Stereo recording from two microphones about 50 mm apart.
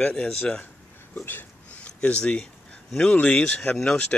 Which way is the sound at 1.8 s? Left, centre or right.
Left.